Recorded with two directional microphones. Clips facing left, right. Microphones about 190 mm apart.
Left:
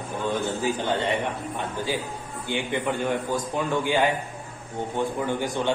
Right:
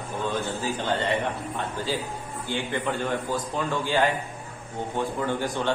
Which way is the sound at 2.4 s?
15° left (ahead or behind).